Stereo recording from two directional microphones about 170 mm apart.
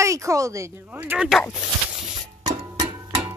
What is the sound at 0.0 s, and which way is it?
Speech, 20° right (ahead or behind).